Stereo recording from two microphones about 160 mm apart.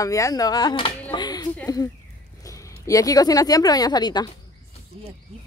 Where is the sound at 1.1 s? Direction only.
25° left (ahead or behind).